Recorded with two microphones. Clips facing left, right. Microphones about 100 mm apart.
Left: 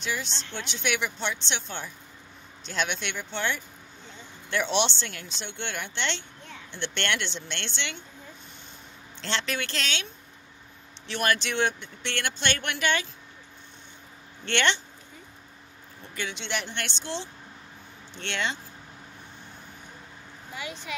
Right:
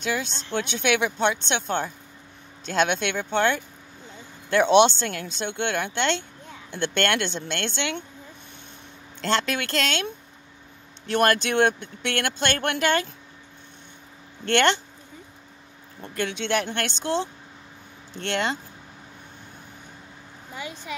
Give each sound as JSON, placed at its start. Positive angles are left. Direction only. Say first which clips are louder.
{"t": 0.0, "sound": "speech", "louder": "right 5 dB", "side_deg": -55}
{"t": 9.2, "sound": "speech", "louder": "right 6 dB", "side_deg": -45}
{"t": 14.5, "sound": "speech", "louder": "right 5 dB", "side_deg": -45}
{"t": 16.0, "sound": "speech", "louder": "right 7 dB", "side_deg": -55}
{"t": 18.2, "sound": "speech", "louder": "right 5 dB", "side_deg": -40}